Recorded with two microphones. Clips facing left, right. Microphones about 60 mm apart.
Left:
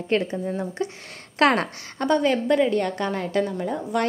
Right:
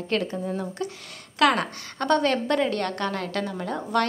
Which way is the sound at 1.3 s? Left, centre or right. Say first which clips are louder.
Left 1 dB; left.